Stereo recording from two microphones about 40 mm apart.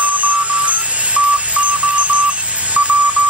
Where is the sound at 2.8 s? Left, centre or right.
Right.